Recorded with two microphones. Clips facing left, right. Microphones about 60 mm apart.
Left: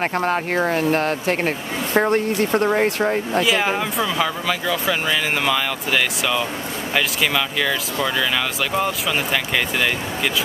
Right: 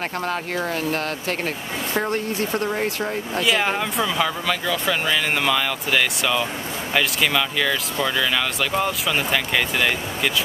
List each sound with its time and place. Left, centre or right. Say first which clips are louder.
0.2 s speech: left 4 dB; left
3.3 s speech: right 1 dB; centre